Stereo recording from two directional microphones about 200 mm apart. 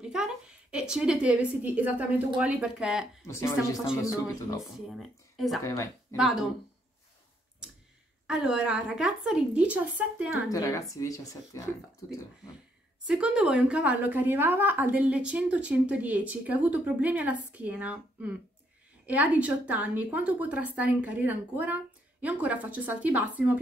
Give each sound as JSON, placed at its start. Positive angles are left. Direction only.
{"t": 0.0, "sound": "a woman's voice", "side_deg": -5}
{"t": 3.3, "sound": "speech", "side_deg": 15}
{"t": 4.6, "sound": "a woman's voice", "side_deg": 0}
{"t": 8.3, "sound": "a woman's voice", "side_deg": -5}
{"t": 10.5, "sound": "speech", "side_deg": 15}
{"t": 13.0, "sound": "a woman's voice", "side_deg": -5}